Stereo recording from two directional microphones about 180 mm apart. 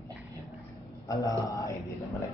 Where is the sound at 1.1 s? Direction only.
20° left (ahead or behind).